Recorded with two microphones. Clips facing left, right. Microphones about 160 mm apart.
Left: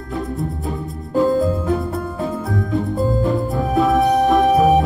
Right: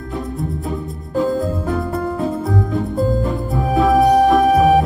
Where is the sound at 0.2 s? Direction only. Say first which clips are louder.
Even; centre (ahead or behind).